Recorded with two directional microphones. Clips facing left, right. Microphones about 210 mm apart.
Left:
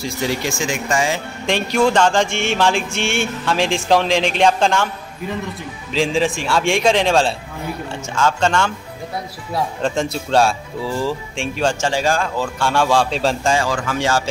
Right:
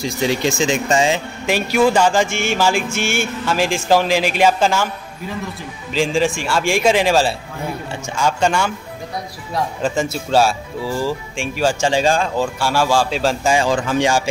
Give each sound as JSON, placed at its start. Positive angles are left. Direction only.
{"t": 0.0, "sound": "speech", "side_deg": -20}
{"t": 1.4, "sound": "music", "side_deg": -5}
{"t": 5.9, "sound": "music", "side_deg": 0}
{"t": 8.1, "sound": "speech", "side_deg": -10}
{"t": 9.5, "sound": "music", "side_deg": 0}
{"t": 11.9, "sound": "speech", "side_deg": -20}
{"t": 12.5, "sound": "music", "side_deg": -5}
{"t": 13.5, "sound": "speech", "side_deg": -20}